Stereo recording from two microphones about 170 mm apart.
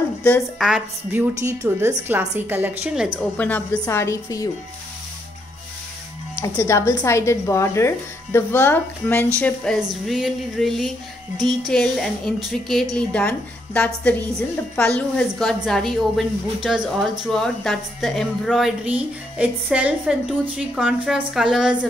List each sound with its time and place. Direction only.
0.2 s a woman's voice: 10° left (ahead or behind)
0.6 s a woman's voice: 5° right (ahead or behind)
1.4 s a woman's voice: 20° right (ahead or behind)
3.3 s a woman's voice: 10° left (ahead or behind)
6.4 s a woman's voice: 15° left (ahead or behind); by 21.7 s 5° right (ahead or behind)